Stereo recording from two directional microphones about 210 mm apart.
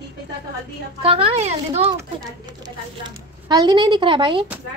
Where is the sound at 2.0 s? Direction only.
20° right (ahead or behind).